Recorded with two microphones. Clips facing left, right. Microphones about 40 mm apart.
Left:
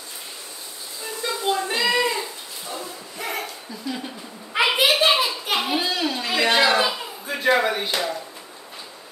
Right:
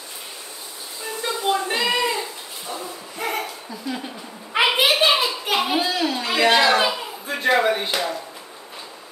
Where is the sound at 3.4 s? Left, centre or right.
Centre.